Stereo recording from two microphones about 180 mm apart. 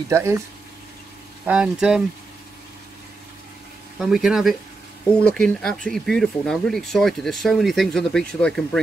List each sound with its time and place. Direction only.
0.1 s speech: 15° right (ahead or behind)
1.4 s speech: 5° right (ahead or behind)
4.0 s speech: centre (ahead or behind)